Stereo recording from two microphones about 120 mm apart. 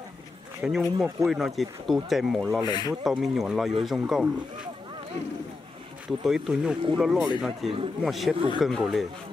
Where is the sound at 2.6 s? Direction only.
35° left (ahead or behind).